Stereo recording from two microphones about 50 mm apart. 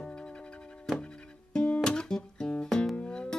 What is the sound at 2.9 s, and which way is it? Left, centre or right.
Music, left.